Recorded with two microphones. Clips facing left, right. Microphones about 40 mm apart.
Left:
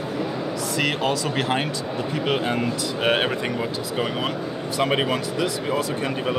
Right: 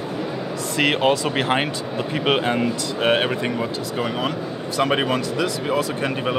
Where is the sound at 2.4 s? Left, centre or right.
Centre.